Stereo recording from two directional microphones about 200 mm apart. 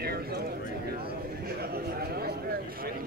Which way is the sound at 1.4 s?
50° right (ahead or behind).